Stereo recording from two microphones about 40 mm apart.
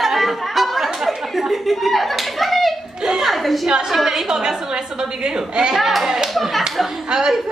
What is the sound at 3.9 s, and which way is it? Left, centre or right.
A woman's voice, centre.